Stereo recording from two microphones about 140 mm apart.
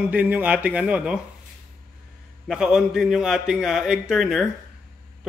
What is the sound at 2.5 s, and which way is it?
A man's voice, 5° right (ahead or behind).